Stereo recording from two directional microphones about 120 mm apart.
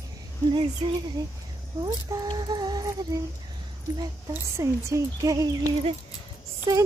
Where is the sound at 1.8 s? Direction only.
35° right (ahead or behind).